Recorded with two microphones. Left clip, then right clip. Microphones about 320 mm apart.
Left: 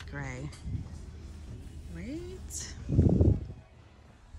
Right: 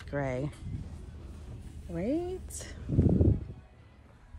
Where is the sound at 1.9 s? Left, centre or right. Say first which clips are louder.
Right 10 dB; centre.